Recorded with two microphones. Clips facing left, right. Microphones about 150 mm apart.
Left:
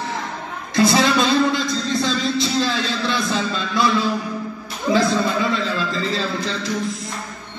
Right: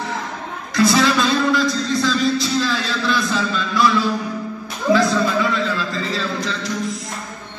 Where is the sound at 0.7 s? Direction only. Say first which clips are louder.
Even; 25° left (ahead or behind).